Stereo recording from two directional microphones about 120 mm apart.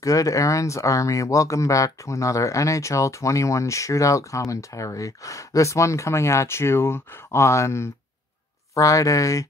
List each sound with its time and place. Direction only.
0.0 s speech: 30° left (ahead or behind)